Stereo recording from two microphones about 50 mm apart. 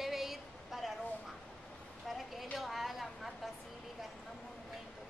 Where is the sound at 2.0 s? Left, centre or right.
Centre.